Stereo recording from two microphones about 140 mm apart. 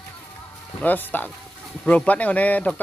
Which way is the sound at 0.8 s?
15° left (ahead or behind).